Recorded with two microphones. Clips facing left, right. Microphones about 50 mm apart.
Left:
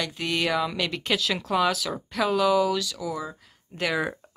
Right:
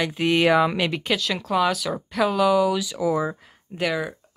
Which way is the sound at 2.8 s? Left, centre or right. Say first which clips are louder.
Right 8 dB; right.